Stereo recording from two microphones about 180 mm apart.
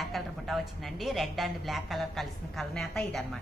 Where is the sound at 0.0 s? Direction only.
Centre (ahead or behind).